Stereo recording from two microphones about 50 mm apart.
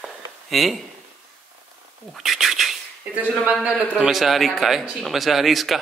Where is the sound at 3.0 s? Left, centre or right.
Right.